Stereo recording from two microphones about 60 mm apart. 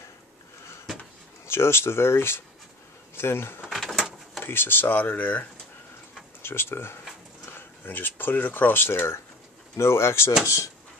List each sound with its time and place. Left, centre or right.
1.4 s speech: left
3.6 s a sound: centre
4.4 s speech: left
6.4 s speech: left
10.4 s speech: left